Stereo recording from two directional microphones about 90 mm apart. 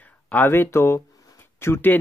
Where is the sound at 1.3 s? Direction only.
25° left (ahead or behind).